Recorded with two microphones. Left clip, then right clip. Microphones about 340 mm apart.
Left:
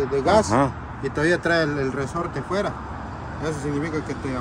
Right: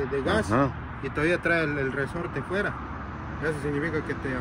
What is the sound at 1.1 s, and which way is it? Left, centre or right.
Speech, centre.